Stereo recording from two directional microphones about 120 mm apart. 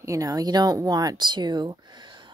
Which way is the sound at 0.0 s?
30° right (ahead or behind).